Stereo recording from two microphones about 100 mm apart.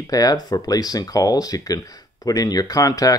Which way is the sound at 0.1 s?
40° left (ahead or behind).